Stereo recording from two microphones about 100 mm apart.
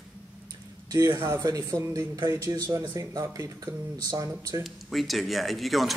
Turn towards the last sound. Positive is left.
turn(degrees=0)  # may be behind; listen again after turning